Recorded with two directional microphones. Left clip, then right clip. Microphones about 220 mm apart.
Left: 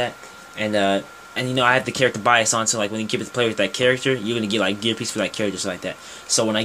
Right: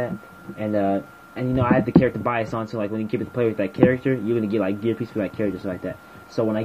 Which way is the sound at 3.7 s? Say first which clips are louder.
Left 1 dB; 50° left (ahead or behind).